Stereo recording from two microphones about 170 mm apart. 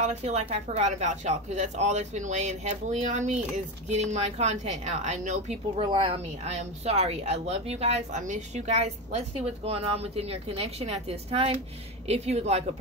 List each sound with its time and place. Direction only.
0.0 s speech: 40° right (ahead or behind)